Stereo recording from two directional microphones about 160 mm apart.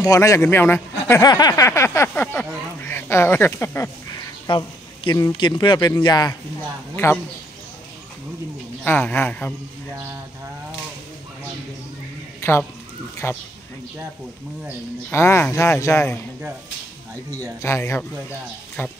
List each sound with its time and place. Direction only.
0.0 s speech: 20° left (ahead or behind)
1.2 s speech: 25° left (ahead or behind)
8.8 s speech: 10° left (ahead or behind)
12.4 s a sound: 15° left (ahead or behind)
13.2 s speech: 15° left (ahead or behind)
15.0 s speech: 15° left (ahead or behind)
17.6 s speech: 20° left (ahead or behind)